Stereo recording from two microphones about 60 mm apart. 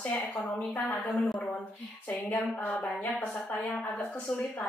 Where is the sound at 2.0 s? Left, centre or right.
Left.